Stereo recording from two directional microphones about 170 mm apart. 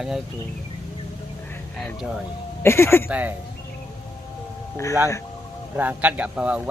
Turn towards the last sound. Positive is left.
turn(degrees=-10)  # may be behind; listen again after turning